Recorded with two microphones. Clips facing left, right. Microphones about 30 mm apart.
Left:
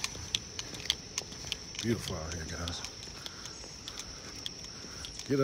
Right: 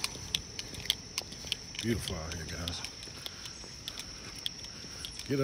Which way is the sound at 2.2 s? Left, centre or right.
Right.